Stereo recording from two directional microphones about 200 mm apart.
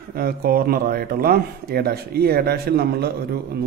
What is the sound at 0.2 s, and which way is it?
A man's voice, 50° right (ahead or behind).